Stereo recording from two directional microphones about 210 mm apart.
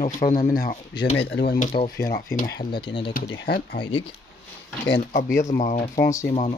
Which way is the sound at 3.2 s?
50° left (ahead or behind).